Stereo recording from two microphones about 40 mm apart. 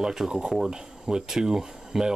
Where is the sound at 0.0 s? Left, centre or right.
Centre.